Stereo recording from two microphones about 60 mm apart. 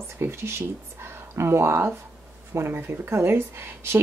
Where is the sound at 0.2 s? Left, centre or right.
Right.